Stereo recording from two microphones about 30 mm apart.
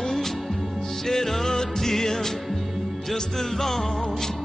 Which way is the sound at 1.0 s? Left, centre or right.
Centre.